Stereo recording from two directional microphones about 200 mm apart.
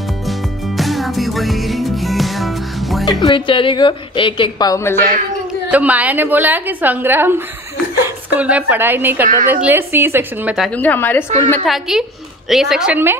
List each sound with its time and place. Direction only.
0.7 s music: centre (ahead or behind)
3.1 s a woman's voice: 20° left (ahead or behind)
5.7 s a woman's voice: 5° right (ahead or behind)
9.2 s a woman's voice: 40° right (ahead or behind)
9.5 s a woman's voice: 10° right (ahead or behind); by 11.2 s 10° left (ahead or behind)
11.2 s a woman's voice: 35° right (ahead or behind)
11.5 s a woman's voice: centre (ahead or behind)